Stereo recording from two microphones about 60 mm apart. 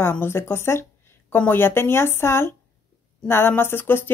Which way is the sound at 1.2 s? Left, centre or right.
Left.